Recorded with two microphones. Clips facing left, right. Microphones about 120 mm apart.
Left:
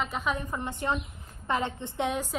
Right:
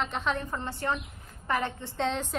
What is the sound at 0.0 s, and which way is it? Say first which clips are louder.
A woman's voice: even; 10° left (ahead or behind).